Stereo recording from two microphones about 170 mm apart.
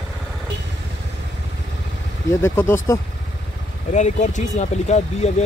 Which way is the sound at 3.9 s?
45° left (ahead or behind).